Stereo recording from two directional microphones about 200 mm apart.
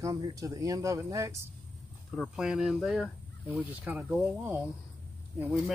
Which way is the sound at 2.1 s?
Centre (ahead or behind).